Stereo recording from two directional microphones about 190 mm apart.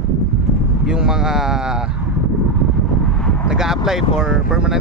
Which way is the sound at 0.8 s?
5° right (ahead or behind).